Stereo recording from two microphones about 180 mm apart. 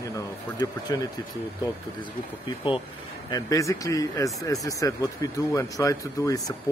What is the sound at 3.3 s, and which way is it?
Speech, 20° left (ahead or behind).